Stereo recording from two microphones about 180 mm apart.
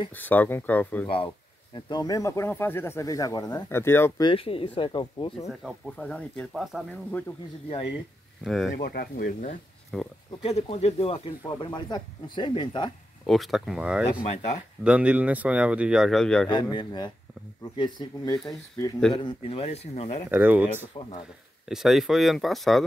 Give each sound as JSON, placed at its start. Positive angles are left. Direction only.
{"t": 0.1, "sound": "speech", "side_deg": 10}
{"t": 1.0, "sound": "speech", "side_deg": 30}
{"t": 4.2, "sound": "a man's voice", "side_deg": 30}
{"t": 5.5, "sound": "speech", "side_deg": 0}
{"t": 8.5, "sound": "speech", "side_deg": 0}
{"t": 8.7, "sound": "speech", "side_deg": 55}
{"t": 9.9, "sound": "speech", "side_deg": 0}
{"t": 10.4, "sound": "speech", "side_deg": 35}
{"t": 13.3, "sound": "speech", "side_deg": 0}
{"t": 14.2, "sound": "a man's voice", "side_deg": 40}
{"t": 14.8, "sound": "speech", "side_deg": -5}
{"t": 16.7, "sound": "speech", "side_deg": 25}
{"t": 19.1, "sound": "a man's voice", "side_deg": 30}
{"t": 20.2, "sound": "speech", "side_deg": -10}